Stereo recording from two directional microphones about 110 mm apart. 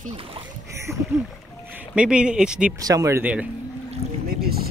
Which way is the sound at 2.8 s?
30° right (ahead or behind).